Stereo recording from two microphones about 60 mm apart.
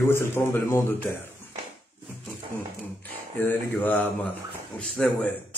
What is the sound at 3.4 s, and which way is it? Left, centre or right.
Speech, left.